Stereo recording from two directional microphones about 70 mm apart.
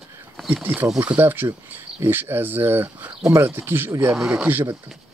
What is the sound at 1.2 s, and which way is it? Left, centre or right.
Speech, right.